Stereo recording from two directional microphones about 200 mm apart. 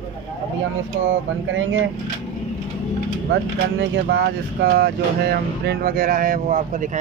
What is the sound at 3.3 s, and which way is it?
Speech, 65° right (ahead or behind).